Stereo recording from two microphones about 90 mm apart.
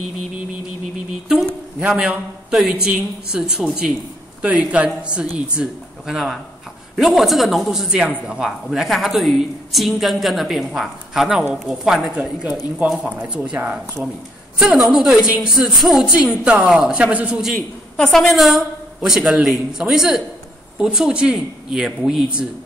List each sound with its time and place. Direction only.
1.8 s a woman's voice: 10° right (ahead or behind)
13.6 s speech: 20° right (ahead or behind)
14.6 s speech: 10° right (ahead or behind)
17.6 s a man's voice: 10° left (ahead or behind); by 22.5 s 10° right (ahead or behind)